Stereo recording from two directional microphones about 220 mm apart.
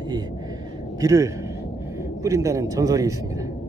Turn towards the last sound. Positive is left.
turn(degrees=-15)  # may be behind; listen again after turning